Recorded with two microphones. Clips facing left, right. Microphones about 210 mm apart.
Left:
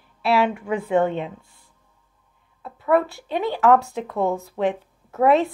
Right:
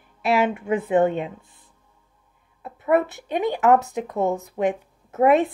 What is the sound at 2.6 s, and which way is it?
Speech, 20° right (ahead or behind).